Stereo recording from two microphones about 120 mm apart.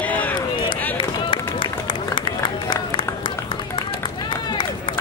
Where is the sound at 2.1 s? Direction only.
40° left (ahead or behind).